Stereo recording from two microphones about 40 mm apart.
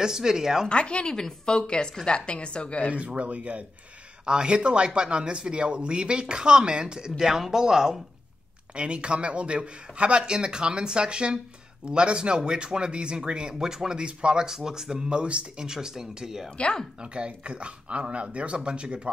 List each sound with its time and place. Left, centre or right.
0.0 s speech: centre
0.7 s a woman's voice: left
2.9 s speech: right
4.3 s speech: right
8.7 s speech: right
15.0 s speech: right
15.6 s speech: centre
16.4 s a woman's voice: left
17.0 s speech: right